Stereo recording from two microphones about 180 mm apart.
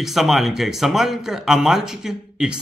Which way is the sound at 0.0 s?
Centre (ahead or behind).